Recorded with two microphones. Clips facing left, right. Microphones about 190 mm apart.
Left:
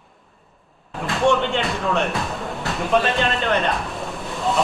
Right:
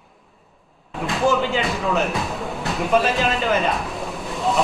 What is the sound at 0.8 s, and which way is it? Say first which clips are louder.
Speech: left 1 dB; centre (ahead or behind).